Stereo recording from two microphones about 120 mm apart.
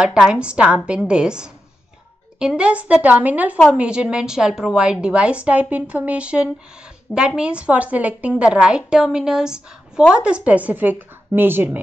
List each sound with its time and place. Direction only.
0.0 s a woman's voice: 5° right (ahead or behind)